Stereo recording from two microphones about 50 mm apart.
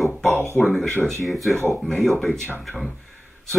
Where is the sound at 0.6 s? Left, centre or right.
Centre.